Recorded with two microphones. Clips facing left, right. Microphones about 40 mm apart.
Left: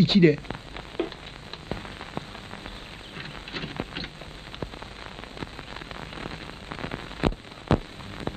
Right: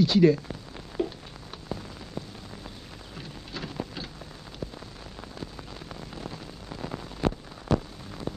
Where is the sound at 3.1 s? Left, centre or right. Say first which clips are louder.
Left 3 dB; left.